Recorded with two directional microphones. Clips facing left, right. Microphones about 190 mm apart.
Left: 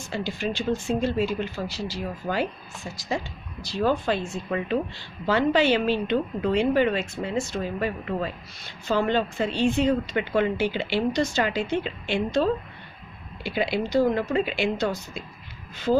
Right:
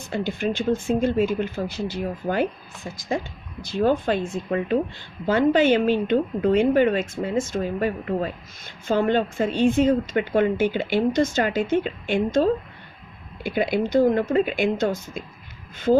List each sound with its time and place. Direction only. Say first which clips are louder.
0.0 s a woman's voice: right 4 dB; 55° right (ahead or behind)
4.5 s a woman's voice: right 3 dB; 45° right (ahead or behind)
15.9 s speech: right 4 dB; 35° right (ahead or behind)